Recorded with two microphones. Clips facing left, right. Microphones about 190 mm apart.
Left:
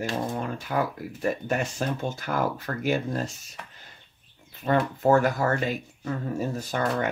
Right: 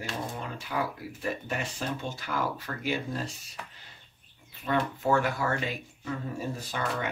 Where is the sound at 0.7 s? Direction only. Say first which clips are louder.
Left 4 dB; 50° left (ahead or behind).